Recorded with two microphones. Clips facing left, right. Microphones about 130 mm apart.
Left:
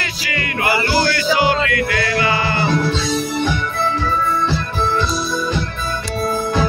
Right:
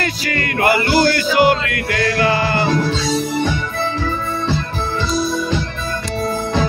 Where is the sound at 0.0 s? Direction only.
45° right (ahead or behind).